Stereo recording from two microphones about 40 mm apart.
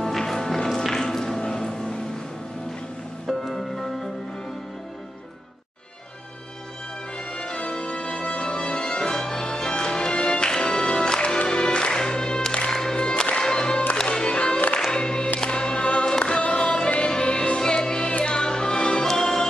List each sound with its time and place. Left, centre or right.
0.0 s music: centre
3.3 s music: centre
7.3 s music: left
19.0 s music: centre